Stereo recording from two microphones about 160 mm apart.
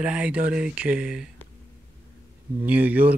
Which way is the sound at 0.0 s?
10° right (ahead or behind).